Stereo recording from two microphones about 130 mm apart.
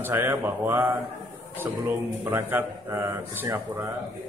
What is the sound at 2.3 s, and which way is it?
Speech, 20° right (ahead or behind).